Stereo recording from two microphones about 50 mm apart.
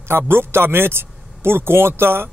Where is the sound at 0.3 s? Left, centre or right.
Right.